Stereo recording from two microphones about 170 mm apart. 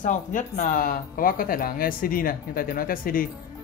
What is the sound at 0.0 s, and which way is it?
Speech, 50° left (ahead or behind).